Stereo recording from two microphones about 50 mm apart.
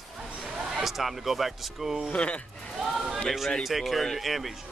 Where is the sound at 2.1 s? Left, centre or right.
Left.